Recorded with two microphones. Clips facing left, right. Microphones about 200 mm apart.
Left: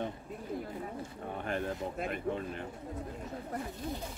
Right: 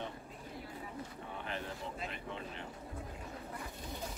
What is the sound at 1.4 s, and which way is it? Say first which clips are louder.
Speech: left 8 dB; 50° left (ahead or behind).